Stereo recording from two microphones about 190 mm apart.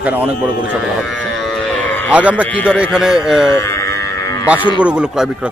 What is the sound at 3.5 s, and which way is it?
Livestock, 15° left (ahead or behind).